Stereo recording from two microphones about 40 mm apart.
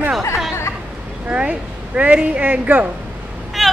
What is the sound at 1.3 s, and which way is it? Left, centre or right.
Speech, right.